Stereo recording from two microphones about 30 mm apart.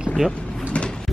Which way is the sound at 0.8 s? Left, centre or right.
Left.